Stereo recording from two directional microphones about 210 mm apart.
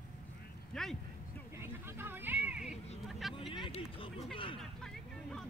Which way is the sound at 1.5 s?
10° right (ahead or behind).